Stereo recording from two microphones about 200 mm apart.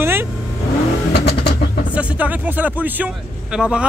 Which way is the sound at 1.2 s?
55° left (ahead or behind).